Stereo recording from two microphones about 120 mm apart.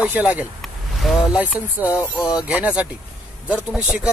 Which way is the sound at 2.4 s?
10° right (ahead or behind).